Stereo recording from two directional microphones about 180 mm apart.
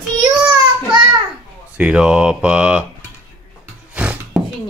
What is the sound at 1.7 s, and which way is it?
Speech, 5° right (ahead or behind).